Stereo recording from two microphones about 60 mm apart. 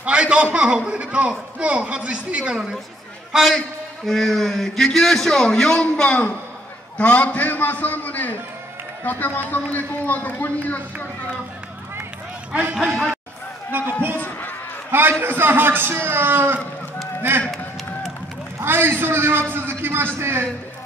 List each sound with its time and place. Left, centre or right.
0.0 s a man's voice: centre
3.3 s a man's voice: centre; by 11.1 s left
12.8 s a man's voice: centre
13.7 s a man's voice: right
18.6 s a man's voice: right